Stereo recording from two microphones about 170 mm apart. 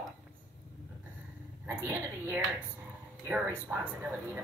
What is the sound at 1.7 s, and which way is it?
A woman's voice, 15° right (ahead or behind).